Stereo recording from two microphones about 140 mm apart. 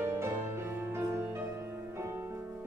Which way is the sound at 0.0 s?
20° right (ahead or behind).